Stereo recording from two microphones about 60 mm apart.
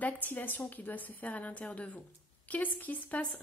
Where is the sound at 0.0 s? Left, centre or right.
Left.